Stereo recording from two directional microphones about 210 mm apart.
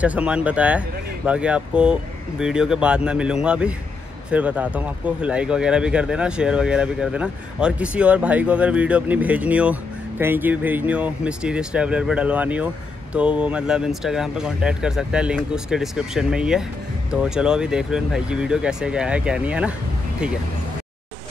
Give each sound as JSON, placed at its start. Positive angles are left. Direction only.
{"t": 0.0, "sound": "speech", "side_deg": -5}